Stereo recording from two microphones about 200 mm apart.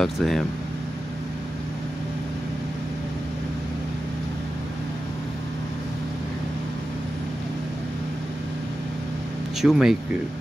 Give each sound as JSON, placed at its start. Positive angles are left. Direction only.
{"t": 0.0, "sound": "speech", "side_deg": 0}
{"t": 9.6, "sound": "speech", "side_deg": 0}